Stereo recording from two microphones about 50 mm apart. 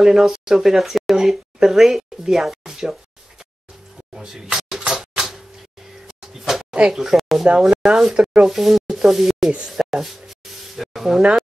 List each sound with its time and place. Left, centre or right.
0.0 s speech: centre
4.1 s a sound: centre
5.1 s door: centre
6.0 s a sound: centre
6.9 s speech: centre
7.7 s speech: centre
8.5 s speech: centre